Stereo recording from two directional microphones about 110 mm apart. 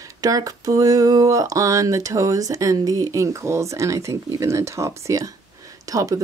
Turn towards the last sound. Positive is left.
turn(degrees=-30)  # may be behind; listen again after turning